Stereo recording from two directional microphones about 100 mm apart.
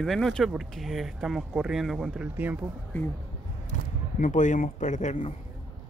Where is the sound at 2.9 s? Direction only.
20° left (ahead or behind).